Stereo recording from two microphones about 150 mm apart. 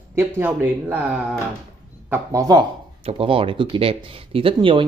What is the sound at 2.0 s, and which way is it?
Speech, 25° right (ahead or behind).